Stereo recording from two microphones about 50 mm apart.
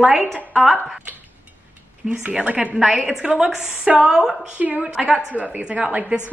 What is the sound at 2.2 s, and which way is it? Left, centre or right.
A woman's voice, right.